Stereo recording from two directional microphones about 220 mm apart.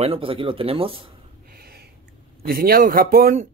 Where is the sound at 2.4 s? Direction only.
40° right (ahead or behind).